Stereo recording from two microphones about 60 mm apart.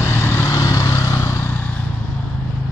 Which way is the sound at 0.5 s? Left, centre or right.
Left.